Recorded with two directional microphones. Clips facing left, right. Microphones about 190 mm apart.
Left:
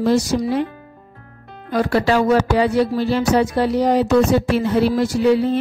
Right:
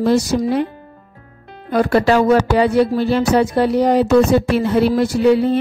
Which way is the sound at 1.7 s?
55° right (ahead or behind).